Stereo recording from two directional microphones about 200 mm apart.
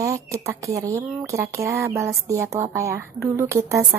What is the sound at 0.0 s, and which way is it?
Speech, 15° right (ahead or behind).